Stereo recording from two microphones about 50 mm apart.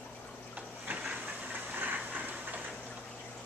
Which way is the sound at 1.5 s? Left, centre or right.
Right.